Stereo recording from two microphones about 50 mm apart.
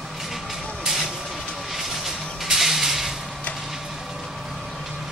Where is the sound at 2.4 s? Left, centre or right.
Centre.